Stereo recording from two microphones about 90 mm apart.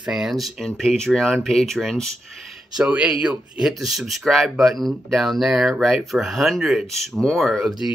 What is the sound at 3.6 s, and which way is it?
Speech, 5° right (ahead or behind).